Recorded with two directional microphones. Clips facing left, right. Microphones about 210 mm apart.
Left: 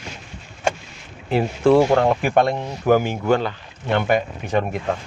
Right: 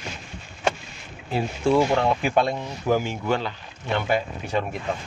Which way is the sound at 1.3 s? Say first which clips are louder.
Left 6 dB; 60° left (ahead or behind).